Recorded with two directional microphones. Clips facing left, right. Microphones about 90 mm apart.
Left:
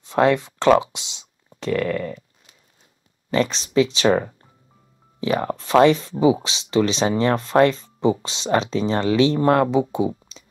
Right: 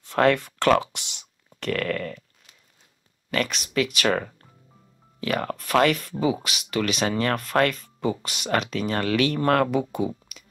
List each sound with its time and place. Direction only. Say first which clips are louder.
0.0 s speech: left 2 dB; 20° left (ahead or behind)
3.3 s speech: left 5 dB; 30° left (ahead or behind)